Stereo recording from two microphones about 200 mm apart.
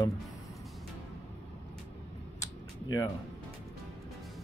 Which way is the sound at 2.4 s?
15° left (ahead or behind).